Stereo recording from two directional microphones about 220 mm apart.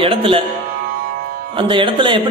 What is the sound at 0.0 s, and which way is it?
Speech, 25° right (ahead or behind).